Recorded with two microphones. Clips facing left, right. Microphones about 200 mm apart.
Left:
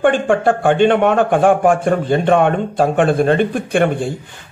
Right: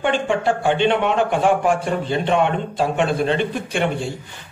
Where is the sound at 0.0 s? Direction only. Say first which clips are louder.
Left 6 dB; 50° left (ahead or behind).